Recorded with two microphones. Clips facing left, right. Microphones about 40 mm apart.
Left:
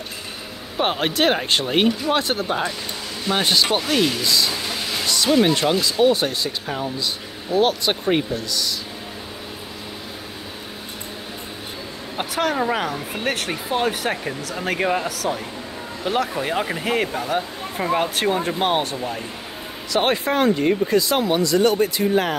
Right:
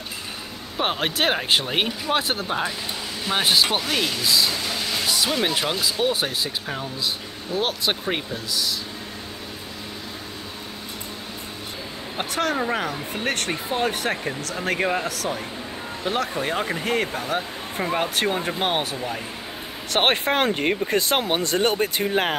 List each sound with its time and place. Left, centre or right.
0.7 s speech: centre
5.0 s speech: centre
12.2 s speech: centre
19.9 s speech: right